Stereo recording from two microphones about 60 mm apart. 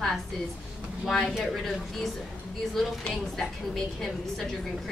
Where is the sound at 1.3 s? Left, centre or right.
Centre.